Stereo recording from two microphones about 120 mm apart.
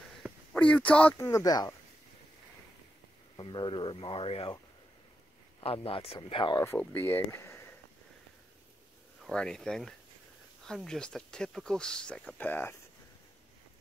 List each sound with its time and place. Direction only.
0.6 s speech: 10° left (ahead or behind)
1.1 s speech: 25° left (ahead or behind)
3.3 s speech: 40° left (ahead or behind)
5.6 s speech: 50° left (ahead or behind)
6.6 s speech: 15° left (ahead or behind)
9.3 s speech: 5° left (ahead or behind)